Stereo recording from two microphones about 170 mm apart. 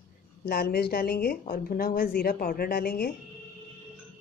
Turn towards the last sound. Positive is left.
turn(degrees=60)  # may be behind; listen again after turning